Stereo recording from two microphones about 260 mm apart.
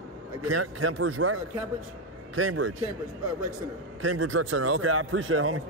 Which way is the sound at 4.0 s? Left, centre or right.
Right.